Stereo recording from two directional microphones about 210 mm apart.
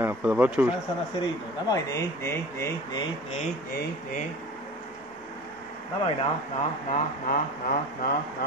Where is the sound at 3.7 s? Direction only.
40° left (ahead or behind).